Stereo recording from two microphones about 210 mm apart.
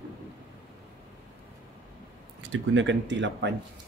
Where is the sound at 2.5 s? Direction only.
60° right (ahead or behind).